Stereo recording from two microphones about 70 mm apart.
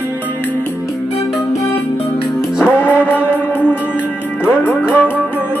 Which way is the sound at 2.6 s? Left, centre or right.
Left.